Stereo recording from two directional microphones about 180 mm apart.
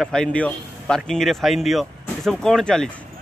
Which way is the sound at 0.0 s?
5° left (ahead or behind).